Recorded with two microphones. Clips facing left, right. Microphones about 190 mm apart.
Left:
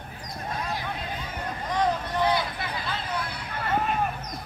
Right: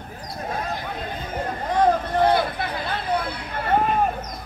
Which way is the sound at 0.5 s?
50° right (ahead or behind).